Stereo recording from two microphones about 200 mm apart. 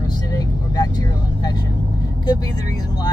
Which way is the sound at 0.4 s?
20° left (ahead or behind).